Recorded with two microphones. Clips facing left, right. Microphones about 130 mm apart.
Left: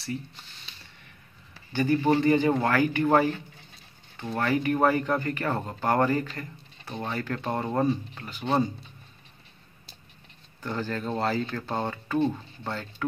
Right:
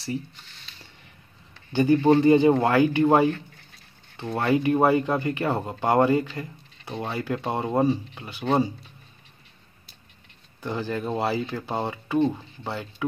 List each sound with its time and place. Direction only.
1.8 s speech: 20° right (ahead or behind)
10.6 s speech: 15° right (ahead or behind)